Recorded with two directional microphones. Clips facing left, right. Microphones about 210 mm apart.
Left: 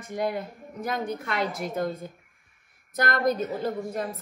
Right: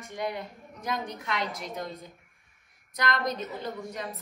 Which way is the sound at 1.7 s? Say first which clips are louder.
Left 8 dB; 50° left (ahead or behind).